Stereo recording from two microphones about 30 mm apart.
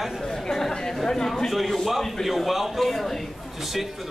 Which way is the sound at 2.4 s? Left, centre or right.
Centre.